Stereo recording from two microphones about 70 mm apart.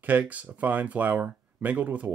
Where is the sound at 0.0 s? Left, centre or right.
Right.